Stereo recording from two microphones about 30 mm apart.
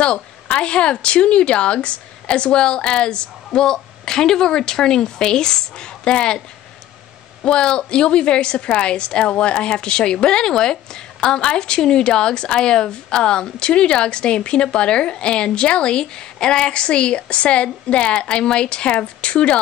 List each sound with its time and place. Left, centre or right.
0.6 s speech: left
3.4 s a woman's voice: centre
7.4 s speech: left